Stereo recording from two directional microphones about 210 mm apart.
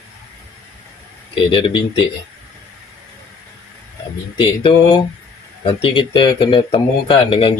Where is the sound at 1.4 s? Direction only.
25° left (ahead or behind).